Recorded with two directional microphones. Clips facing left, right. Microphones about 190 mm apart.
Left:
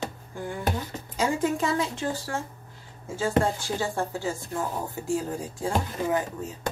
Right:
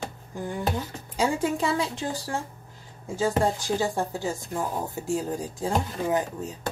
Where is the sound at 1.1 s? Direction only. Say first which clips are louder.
Even; 10° right (ahead or behind).